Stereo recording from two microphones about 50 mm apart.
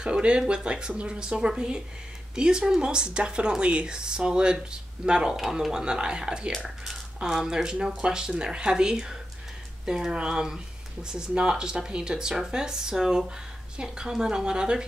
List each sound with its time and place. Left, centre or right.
0.0 s speech: centre
5.4 s speech: centre